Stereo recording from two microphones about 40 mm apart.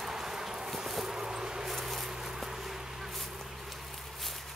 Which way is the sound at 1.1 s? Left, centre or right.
Centre.